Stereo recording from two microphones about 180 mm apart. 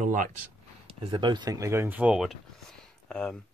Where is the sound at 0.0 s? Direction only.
45° right (ahead or behind).